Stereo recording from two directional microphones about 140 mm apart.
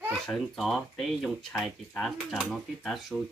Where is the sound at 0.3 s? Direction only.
Centre (ahead or behind).